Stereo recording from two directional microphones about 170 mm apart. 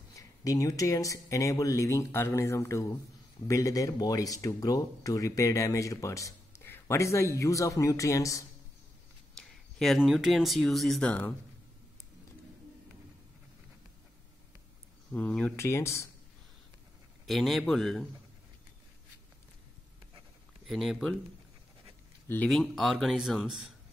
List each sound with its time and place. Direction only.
0.1 s speech: 20° left (ahead or behind)
9.4 s speech: centre (ahead or behind)
15.1 s speech: 5° left (ahead or behind)
17.3 s speech: centre (ahead or behind)
20.6 s speech: centre (ahead or behind)
22.3 s speech: 5° left (ahead or behind)